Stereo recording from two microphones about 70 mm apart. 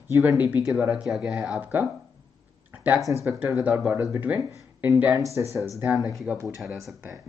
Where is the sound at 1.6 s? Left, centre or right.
Right.